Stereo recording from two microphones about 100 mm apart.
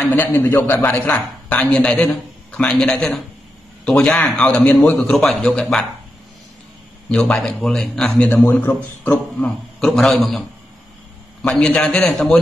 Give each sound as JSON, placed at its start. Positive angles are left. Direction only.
{"t": 0.0, "sound": "a man's voice", "side_deg": 20}
{"t": 4.6, "sound": "a man's voice", "side_deg": 15}
{"t": 5.1, "sound": "a man's voice", "side_deg": 5}
{"t": 7.1, "sound": "a man's voice", "side_deg": 10}
{"t": 11.5, "sound": "a man's voice", "side_deg": 10}